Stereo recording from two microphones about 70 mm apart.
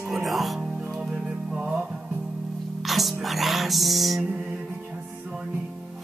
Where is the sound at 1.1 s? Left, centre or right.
Centre.